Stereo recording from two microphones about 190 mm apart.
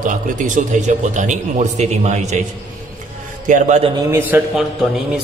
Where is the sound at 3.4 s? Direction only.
40° right (ahead or behind).